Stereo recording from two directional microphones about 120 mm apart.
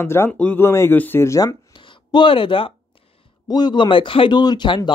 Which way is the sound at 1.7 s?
40° left (ahead or behind).